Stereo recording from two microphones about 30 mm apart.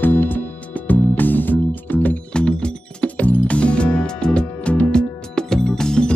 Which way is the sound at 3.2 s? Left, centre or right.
Left.